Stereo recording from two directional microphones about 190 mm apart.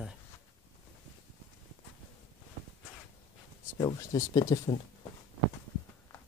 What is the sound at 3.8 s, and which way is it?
Speech, 20° left (ahead or behind).